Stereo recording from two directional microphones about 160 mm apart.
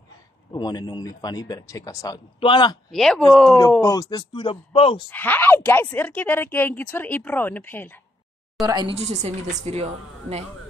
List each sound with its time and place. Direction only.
0.5 s speech: 25° left (ahead or behind)
2.9 s speech: 5° left (ahead or behind)
3.8 s speech: 20° left (ahead or behind)
5.1 s speech: 10° left (ahead or behind)
8.6 s a woman's voice: 25° right (ahead or behind)
8.9 s speech: 45° right (ahead or behind)